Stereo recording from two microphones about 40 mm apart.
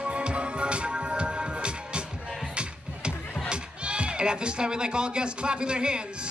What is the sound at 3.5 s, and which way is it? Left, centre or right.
Speech, right.